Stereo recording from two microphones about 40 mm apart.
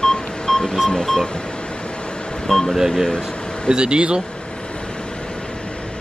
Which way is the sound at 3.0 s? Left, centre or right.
Centre.